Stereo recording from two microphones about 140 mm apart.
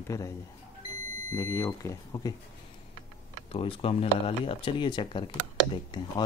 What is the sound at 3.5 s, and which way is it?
Speech, 40° left (ahead or behind).